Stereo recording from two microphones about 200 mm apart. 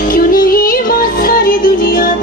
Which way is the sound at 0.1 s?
45° left (ahead or behind).